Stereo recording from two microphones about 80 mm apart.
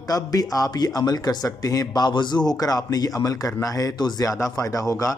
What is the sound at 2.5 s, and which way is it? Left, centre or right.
Speech, left.